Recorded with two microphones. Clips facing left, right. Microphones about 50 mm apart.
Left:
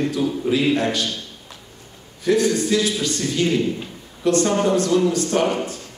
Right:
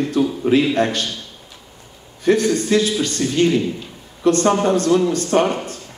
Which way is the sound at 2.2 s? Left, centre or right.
Right.